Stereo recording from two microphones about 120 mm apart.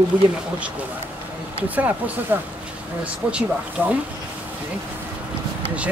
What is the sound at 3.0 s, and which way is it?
Speech, 10° right (ahead or behind).